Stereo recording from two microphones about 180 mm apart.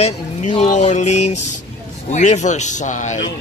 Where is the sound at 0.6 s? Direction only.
40° left (ahead or behind).